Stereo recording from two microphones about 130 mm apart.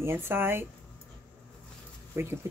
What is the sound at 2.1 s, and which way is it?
Speech, 15° right (ahead or behind).